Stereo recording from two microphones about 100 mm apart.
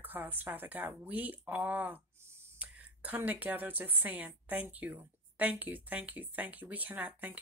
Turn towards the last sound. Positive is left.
turn(degrees=-15)  # may be behind; listen again after turning